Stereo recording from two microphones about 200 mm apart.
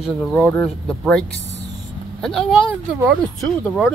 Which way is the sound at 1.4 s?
35° left (ahead or behind).